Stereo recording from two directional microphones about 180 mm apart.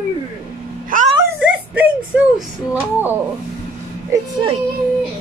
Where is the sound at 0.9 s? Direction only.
50° right (ahead or behind).